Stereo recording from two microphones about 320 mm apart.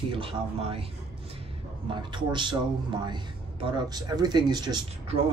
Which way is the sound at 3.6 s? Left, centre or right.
Centre.